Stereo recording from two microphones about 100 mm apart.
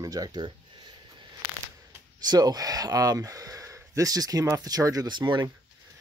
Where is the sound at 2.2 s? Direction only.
40° right (ahead or behind).